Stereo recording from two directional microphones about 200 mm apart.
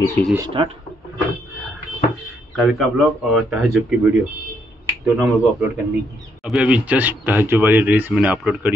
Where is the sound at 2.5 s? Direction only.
Centre (ahead or behind).